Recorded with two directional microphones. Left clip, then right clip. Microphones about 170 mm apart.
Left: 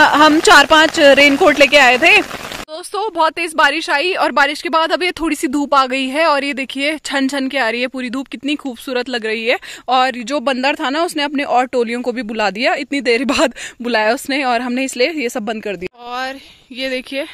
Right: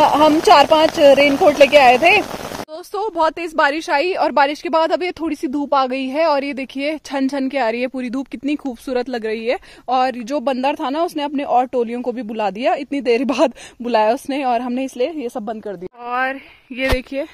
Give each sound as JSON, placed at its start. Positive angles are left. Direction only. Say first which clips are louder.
{"t": 0.0, "sound": "speech", "louder": "left 3 dB", "side_deg": 10}
{"t": 15.6, "sound": "speech", "louder": "left 5 dB", "side_deg": 55}
{"t": 16.1, "sound": "speech", "louder": "right 4 dB", "side_deg": 5}